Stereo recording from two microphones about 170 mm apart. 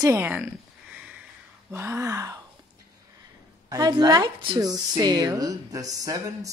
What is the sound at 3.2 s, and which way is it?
A woman's voice, 20° right (ahead or behind).